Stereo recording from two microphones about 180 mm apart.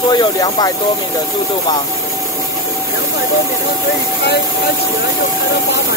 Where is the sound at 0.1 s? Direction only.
25° left (ahead or behind).